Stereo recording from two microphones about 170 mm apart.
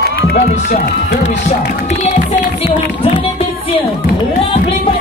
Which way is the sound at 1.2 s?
45° left (ahead or behind).